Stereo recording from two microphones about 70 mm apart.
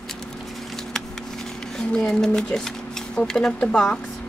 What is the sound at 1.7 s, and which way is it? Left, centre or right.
Speech, centre.